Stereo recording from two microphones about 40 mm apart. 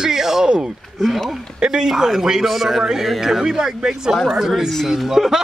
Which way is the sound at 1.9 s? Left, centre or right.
Centre.